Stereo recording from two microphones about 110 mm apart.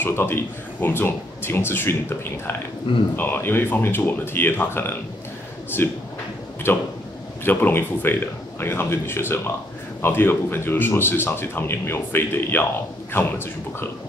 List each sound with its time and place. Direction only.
0.0 s speech: 20° left (ahead or behind)
2.9 s speech: 50° left (ahead or behind)
3.2 s speech: 20° left (ahead or behind)